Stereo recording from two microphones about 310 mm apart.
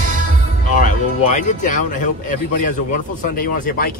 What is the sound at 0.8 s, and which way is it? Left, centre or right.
Speech, left.